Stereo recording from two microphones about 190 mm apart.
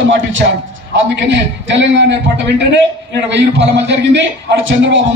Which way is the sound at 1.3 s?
70° right (ahead or behind).